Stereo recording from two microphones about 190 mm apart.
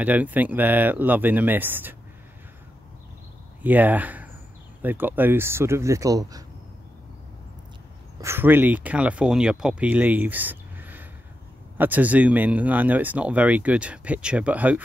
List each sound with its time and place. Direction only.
0.0 s speech: 10° right (ahead or behind)
3.6 s speech: 10° right (ahead or behind)
8.2 s speech: 10° right (ahead or behind)